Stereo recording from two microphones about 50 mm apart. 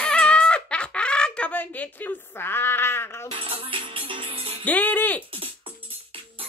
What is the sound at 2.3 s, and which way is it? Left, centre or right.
Music, left.